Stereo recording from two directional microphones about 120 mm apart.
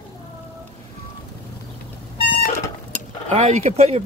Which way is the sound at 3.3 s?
65° right (ahead or behind).